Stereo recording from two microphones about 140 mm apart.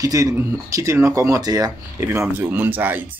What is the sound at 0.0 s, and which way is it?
Speech, 25° right (ahead or behind).